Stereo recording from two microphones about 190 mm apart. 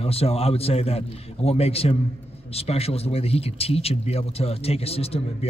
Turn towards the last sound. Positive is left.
turn(degrees=30)  # may be behind; listen again after turning